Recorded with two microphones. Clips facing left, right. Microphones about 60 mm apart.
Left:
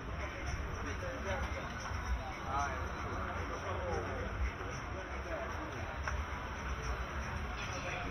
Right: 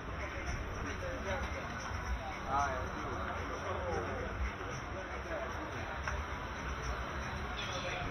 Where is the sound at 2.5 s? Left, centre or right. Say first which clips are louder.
Right 3 dB; right.